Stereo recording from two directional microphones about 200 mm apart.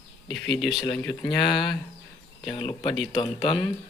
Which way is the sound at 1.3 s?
25° left (ahead or behind).